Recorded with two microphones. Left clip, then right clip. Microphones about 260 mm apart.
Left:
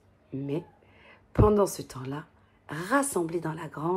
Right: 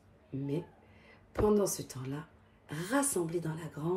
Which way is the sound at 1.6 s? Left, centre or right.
Centre.